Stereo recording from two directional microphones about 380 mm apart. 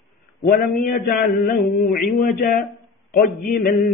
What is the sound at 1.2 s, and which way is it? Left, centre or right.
A man's voice, left.